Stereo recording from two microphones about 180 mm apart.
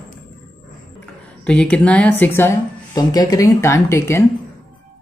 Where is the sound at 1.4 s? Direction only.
5° left (ahead or behind).